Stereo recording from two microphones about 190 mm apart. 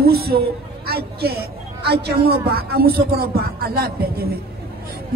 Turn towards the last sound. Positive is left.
turn(degrees=-55)  # may be behind; listen again after turning